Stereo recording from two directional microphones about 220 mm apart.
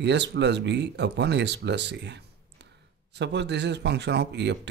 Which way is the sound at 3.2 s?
50° right (ahead or behind).